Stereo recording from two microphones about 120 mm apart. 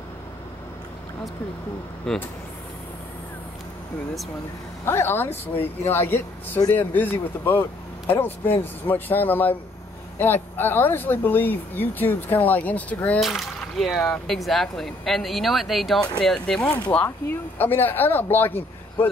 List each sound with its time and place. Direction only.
2.1 s speech: 5° left (ahead or behind)
4.8 s speech: 20° left (ahead or behind)
13.2 s speech: centre (ahead or behind)
16.9 s speech: 15° left (ahead or behind)